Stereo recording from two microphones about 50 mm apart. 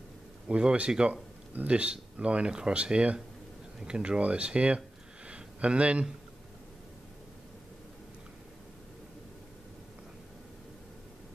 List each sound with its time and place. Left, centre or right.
0.5 s speech: right